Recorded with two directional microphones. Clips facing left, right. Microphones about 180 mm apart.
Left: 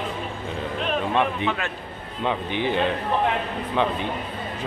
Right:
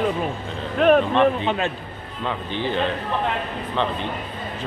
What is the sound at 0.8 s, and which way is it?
Speech, 55° right (ahead or behind).